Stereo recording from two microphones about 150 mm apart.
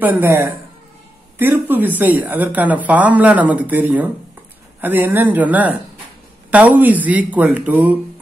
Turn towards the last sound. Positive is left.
turn(degrees=-10)  # may be behind; listen again after turning